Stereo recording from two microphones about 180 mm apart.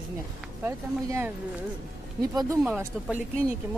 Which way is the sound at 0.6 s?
15° right (ahead or behind).